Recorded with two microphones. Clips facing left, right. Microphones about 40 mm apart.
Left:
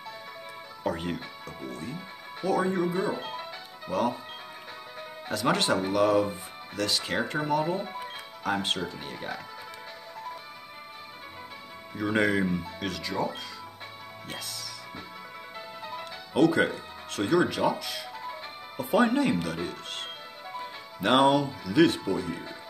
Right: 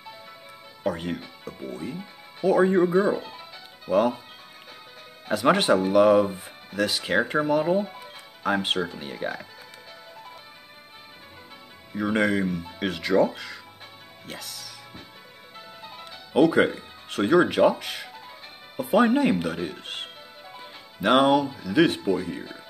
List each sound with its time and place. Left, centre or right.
0.8 s speech: centre
1.7 s speech: centre
2.6 s speech: right
3.2 s speech: left
3.9 s speech: centre
5.3 s speech: centre
11.9 s speech: centre
12.6 s speech: centre
13.0 s speech: right
14.2 s speech: centre
15.8 s speech: centre; by 18.0 s right
18.8 s speech: centre
20.5 s speech: centre